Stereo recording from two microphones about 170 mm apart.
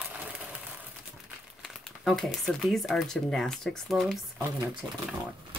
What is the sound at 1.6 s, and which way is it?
Speech, centre (ahead or behind).